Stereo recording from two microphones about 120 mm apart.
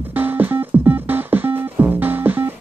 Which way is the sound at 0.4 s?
15° right (ahead or behind).